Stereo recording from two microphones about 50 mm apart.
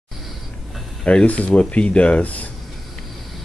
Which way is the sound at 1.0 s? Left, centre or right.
Left.